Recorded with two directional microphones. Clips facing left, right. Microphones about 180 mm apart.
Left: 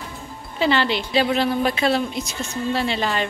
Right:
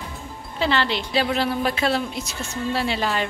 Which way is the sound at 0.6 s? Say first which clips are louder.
Left 3 dB; centre (ahead or behind).